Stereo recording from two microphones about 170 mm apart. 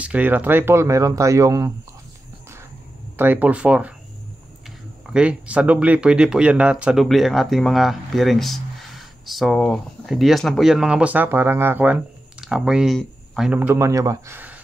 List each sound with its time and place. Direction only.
0.0 s speech: 10° right (ahead or behind)
3.2 s speech: 10° right (ahead or behind)
5.0 s speech: 5° right (ahead or behind)